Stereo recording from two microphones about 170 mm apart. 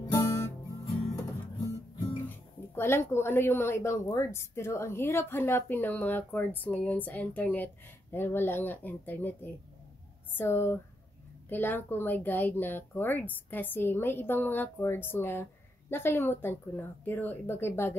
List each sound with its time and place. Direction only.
0.0 s guitar: 15° left (ahead or behind)
1.1 s music: 20° left (ahead or behind)
2.2 s a woman's voice: 15° left (ahead or behind)